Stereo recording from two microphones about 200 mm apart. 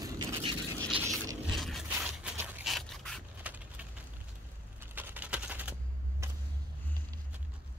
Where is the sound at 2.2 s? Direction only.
5° right (ahead or behind).